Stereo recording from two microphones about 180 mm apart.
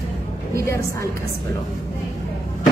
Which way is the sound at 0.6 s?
15° left (ahead or behind).